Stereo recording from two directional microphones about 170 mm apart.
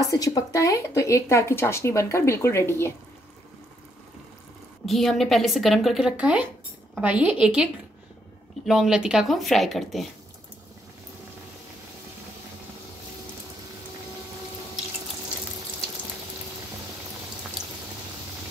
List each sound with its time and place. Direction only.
0.0 s speech: 20° left (ahead or behind)
4.8 s a woman's voice: centre (ahead or behind)